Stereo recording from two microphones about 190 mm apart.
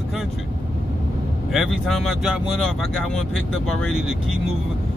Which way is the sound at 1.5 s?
Centre (ahead or behind).